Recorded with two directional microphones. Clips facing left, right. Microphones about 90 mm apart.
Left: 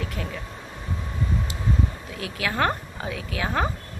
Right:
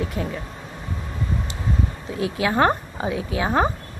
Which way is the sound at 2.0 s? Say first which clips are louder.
Right 7 dB; 25° right (ahead or behind).